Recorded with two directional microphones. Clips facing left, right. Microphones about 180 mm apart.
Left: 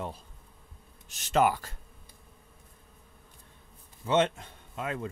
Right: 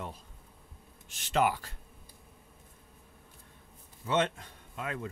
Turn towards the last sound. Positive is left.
turn(degrees=25)  # may be behind; listen again after turning